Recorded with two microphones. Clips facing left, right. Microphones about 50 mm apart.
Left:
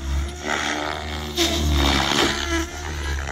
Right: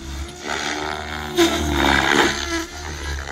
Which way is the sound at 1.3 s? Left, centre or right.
Centre.